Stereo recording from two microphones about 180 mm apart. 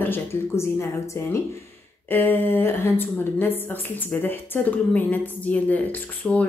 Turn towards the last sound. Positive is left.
turn(degrees=10)  # may be behind; listen again after turning